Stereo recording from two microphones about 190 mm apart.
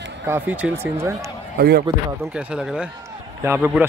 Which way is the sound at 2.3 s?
5° right (ahead or behind).